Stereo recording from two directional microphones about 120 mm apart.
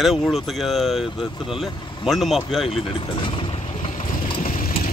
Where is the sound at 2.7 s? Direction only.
50° left (ahead or behind).